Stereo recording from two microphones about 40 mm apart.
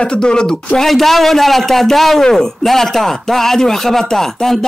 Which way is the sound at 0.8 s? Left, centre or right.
Centre.